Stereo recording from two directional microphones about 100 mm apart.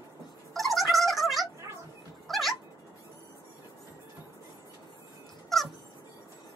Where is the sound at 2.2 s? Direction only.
Centre (ahead or behind).